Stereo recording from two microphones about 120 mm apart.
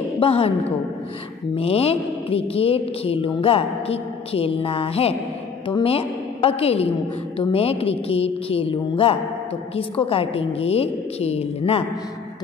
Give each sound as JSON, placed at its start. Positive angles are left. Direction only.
{"t": 0.2, "sound": "a woman's voice", "side_deg": 50}
{"t": 1.5, "sound": "a woman's voice", "side_deg": 55}